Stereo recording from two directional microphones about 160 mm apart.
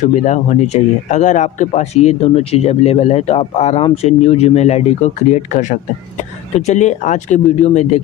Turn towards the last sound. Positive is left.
turn(degrees=45)  # may be behind; listen again after turning